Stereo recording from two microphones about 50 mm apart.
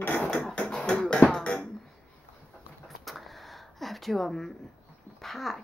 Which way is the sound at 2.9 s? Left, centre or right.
Centre.